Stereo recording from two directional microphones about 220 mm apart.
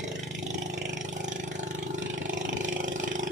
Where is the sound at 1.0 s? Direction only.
35° right (ahead or behind).